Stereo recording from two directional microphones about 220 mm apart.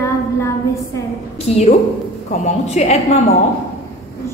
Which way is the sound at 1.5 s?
30° left (ahead or behind).